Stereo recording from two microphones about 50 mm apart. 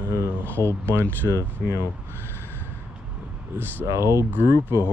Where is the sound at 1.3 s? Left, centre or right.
Right.